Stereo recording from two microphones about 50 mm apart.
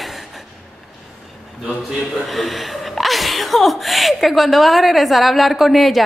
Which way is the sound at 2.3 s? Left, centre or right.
Centre.